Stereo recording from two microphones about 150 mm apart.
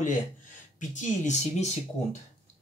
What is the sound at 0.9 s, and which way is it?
Speech, 50° left (ahead or behind).